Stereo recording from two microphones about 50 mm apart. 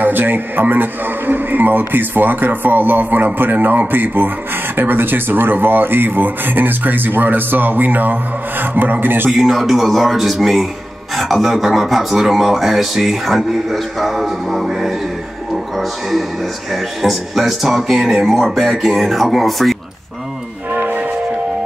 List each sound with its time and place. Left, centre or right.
0.0 s a man's voice: right
9.3 s speech: centre
17.0 s speech: centre
20.7 s music: right